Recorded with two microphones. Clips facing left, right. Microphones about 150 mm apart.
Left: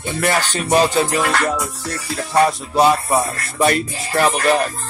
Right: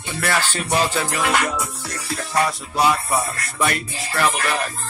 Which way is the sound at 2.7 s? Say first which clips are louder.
Left 4 dB; 30° left (ahead or behind).